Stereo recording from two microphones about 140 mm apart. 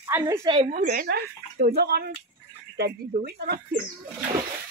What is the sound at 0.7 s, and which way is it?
Speech, 55° right (ahead or behind).